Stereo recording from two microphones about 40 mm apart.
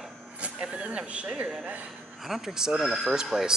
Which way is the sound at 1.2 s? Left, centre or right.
Right.